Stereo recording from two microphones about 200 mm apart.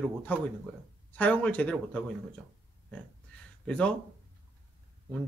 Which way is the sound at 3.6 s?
5° left (ahead or behind).